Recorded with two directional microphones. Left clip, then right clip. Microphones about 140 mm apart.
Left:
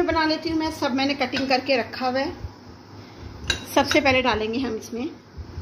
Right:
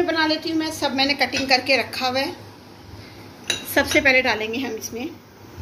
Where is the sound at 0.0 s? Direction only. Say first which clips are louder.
Right 1 dB; 90° left.